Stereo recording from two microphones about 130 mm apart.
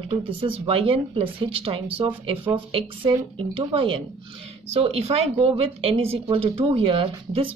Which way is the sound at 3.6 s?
45° right (ahead or behind).